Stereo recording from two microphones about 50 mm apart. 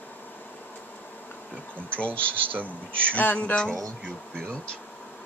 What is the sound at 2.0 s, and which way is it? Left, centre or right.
Speech, left.